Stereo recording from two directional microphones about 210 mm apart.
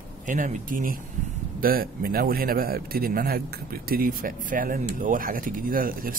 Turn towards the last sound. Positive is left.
turn(degrees=-40)  # may be behind; listen again after turning